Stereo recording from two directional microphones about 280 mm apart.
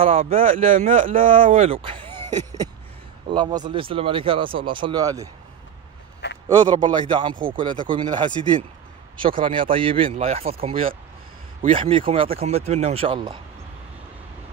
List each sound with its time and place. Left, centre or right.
0.0 s speech: right
2.3 s a sound: centre
3.3 s speech: centre
6.5 s speech: centre
9.4 s speech: centre